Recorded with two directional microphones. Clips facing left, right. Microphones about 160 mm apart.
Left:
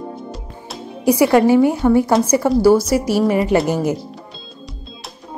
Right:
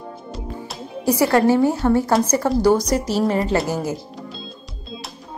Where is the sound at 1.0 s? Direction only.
15° left (ahead or behind).